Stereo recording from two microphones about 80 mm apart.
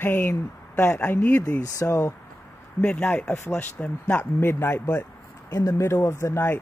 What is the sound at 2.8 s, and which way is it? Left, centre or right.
Speech, centre.